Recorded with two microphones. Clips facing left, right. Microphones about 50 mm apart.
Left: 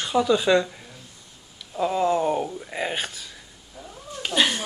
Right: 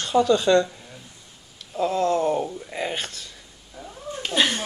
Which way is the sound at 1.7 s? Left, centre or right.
Centre.